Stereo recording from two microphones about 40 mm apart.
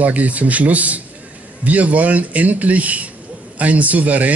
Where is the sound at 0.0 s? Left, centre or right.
Right.